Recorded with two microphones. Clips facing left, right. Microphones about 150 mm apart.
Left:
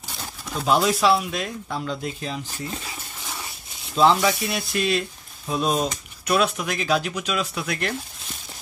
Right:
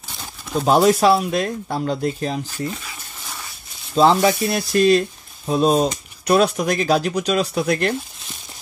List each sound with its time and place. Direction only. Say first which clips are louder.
0.1 s pigeon: right 2 dB; centre (ahead or behind)
0.7 s speech: right 5 dB; 45° right (ahead or behind)
3.9 s speech: right 4 dB; 35° right (ahead or behind)